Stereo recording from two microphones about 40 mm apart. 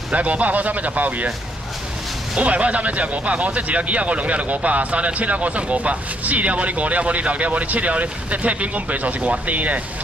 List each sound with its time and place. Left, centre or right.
0.1 s speech: right
2.3 s speech: right